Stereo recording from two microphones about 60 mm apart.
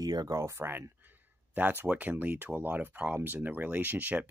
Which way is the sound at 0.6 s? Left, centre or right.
Right.